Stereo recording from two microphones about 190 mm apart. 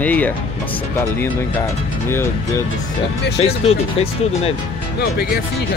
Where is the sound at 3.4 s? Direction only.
30° left (ahead or behind).